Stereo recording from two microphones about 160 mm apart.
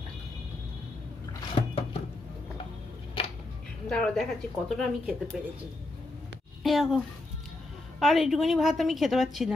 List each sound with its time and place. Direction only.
1.5 s a sound: 35° left (ahead or behind)
3.9 s a woman's voice: 5° left (ahead or behind)
6.6 s a woman's voice: centre (ahead or behind)
8.0 s a woman's voice: centre (ahead or behind)